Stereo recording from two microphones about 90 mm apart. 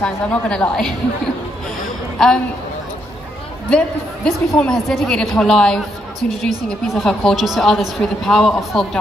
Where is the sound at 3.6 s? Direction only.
10° left (ahead or behind).